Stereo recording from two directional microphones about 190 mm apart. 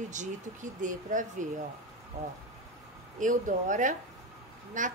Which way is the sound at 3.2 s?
45° right (ahead or behind).